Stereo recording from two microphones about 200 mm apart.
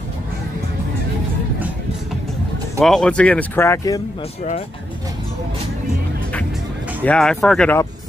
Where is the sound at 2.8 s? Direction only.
5° left (ahead or behind).